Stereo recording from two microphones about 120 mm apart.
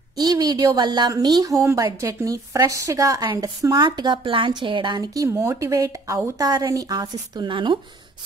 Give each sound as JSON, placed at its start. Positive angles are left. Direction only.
{"t": 0.2, "sound": "a woman's voice", "side_deg": -35}